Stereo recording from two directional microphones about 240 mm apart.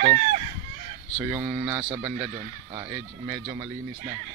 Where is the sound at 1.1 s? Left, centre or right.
Centre.